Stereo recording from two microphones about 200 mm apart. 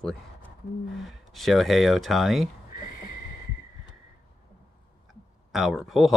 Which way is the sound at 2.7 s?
45° left (ahead or behind).